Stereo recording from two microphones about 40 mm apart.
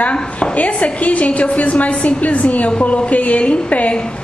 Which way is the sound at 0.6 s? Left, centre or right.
Left.